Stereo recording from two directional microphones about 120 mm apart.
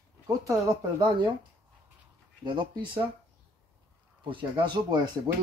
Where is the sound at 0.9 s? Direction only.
40° right (ahead or behind).